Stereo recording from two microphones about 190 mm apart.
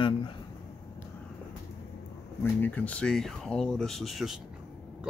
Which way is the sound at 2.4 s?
10° left (ahead or behind).